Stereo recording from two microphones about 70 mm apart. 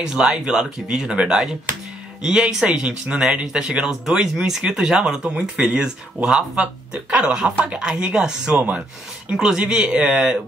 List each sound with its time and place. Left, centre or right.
0.0 s speech: centre